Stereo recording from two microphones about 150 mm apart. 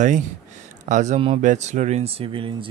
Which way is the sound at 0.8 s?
55° right (ahead or behind).